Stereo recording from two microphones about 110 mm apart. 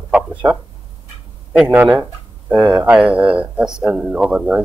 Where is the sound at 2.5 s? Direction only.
5° right (ahead or behind).